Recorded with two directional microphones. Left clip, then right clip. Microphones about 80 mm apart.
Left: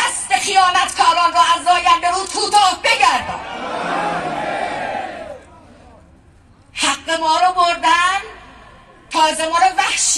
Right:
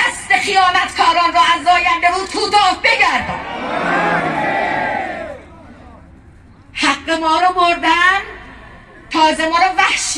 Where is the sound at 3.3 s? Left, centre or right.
Left.